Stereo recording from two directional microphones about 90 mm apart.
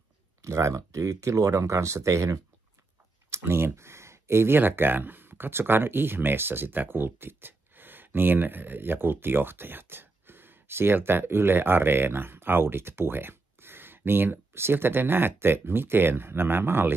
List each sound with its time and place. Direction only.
0.4 s speech: 35° right (ahead or behind)